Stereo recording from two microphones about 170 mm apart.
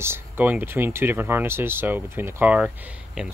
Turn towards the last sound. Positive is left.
turn(degrees=-5)  # may be behind; listen again after turning